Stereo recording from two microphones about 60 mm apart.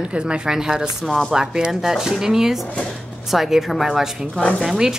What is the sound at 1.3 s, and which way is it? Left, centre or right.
Speech, centre.